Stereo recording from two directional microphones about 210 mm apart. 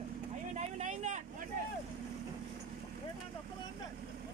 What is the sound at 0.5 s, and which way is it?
Vehicle, 35° right (ahead or behind).